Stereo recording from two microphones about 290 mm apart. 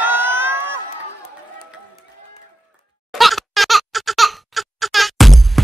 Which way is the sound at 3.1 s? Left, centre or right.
Centre.